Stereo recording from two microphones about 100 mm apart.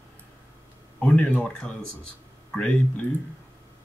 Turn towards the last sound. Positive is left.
turn(degrees=10)  # may be behind; listen again after turning